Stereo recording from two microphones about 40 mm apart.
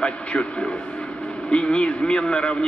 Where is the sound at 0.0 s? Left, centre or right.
Left.